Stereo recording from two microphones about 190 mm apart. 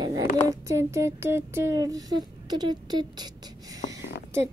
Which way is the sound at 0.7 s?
15° right (ahead or behind).